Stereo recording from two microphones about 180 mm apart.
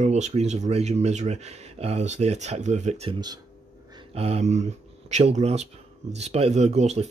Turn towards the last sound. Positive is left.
turn(degrees=-40)  # may be behind; listen again after turning